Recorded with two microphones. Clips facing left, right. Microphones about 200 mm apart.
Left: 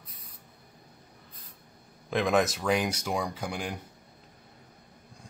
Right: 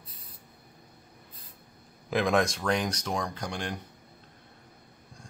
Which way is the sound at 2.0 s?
Centre (ahead or behind).